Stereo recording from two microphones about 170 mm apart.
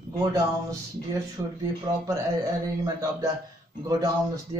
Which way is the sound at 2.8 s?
20° right (ahead or behind).